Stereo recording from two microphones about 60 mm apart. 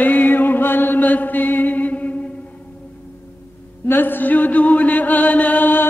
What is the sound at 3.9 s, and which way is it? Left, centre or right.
Chant, left.